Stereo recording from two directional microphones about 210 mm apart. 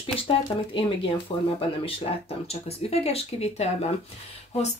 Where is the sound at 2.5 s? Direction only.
30° left (ahead or behind).